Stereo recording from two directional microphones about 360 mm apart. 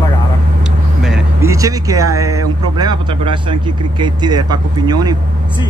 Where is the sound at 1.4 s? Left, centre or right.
Centre.